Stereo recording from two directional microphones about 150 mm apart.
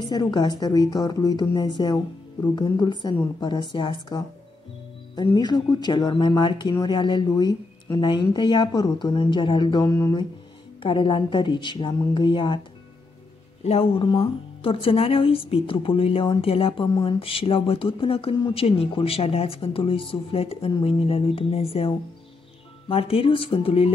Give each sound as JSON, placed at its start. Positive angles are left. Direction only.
{"t": 0.1, "sound": "speech", "side_deg": 30}
{"t": 13.7, "sound": "speech", "side_deg": 40}